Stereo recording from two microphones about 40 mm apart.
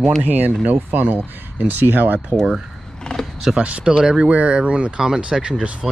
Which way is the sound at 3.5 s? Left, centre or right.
Right.